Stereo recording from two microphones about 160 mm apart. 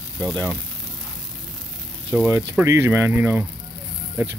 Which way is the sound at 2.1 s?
15° right (ahead or behind).